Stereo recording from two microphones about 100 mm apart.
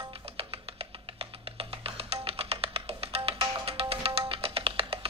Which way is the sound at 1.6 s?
75° right (ahead or behind).